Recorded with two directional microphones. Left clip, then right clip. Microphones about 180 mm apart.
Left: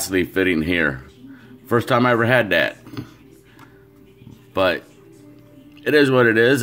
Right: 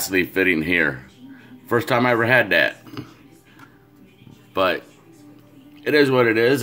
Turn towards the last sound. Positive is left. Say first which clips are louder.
# left 2 dB
turn(degrees=20)  # may be behind; listen again after turning